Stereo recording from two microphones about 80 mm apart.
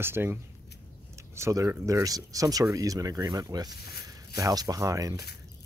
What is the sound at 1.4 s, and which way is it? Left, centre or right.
Speech, right.